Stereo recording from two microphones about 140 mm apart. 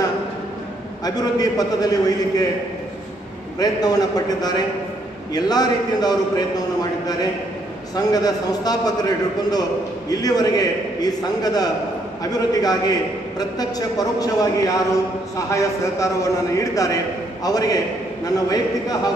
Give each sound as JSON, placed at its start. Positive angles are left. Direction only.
{"t": 1.0, "sound": "a man's voice", "side_deg": 25}
{"t": 3.5, "sound": "a man's voice", "side_deg": 25}